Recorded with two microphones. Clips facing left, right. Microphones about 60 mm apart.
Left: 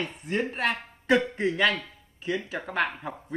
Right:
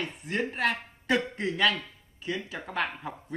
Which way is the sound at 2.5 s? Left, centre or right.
Centre.